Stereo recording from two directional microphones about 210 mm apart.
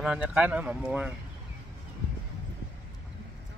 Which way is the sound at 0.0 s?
5° right (ahead or behind).